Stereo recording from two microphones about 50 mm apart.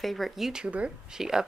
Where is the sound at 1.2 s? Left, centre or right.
Centre.